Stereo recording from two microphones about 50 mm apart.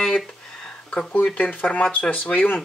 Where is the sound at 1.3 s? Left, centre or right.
Left.